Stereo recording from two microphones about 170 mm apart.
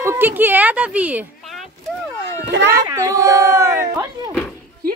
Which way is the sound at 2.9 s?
20° right (ahead or behind).